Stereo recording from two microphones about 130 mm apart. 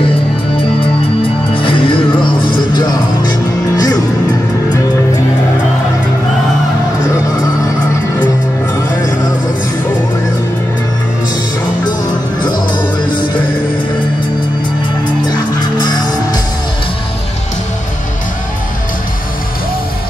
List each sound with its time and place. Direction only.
1.5 s music: 40° left (ahead or behind)
12.4 s music: 35° left (ahead or behind)